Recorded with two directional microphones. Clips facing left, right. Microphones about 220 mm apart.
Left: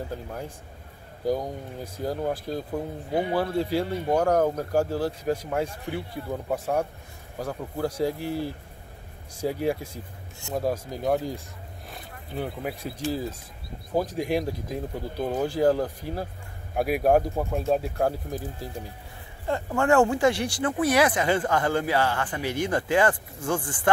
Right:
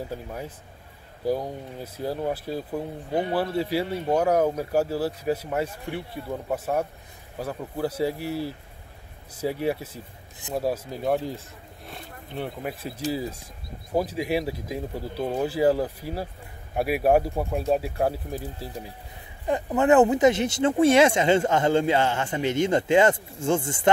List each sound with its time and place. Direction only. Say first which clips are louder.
0.1 s speech: even; 5° right (ahead or behind)
3.1 s speech: even; 10° left (ahead or behind)
3.3 s speech: even; 5° right (ahead or behind)
19.4 s speech: right 3 dB; 20° right (ahead or behind)